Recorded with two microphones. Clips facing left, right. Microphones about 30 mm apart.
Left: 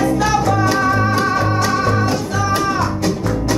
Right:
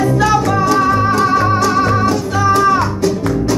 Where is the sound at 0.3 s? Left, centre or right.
Centre.